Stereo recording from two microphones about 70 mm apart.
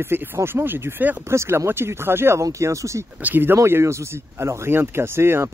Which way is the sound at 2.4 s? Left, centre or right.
Right.